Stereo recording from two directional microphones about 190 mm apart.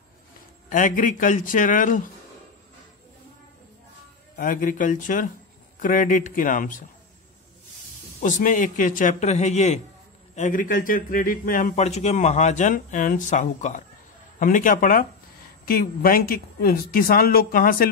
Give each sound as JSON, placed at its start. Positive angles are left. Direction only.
{"t": 0.7, "sound": "speech", "side_deg": 45}
{"t": 4.4, "sound": "speech", "side_deg": 45}
{"t": 8.2, "sound": "a man's voice", "side_deg": 45}